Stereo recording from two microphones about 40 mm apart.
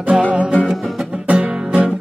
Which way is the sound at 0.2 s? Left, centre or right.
Right.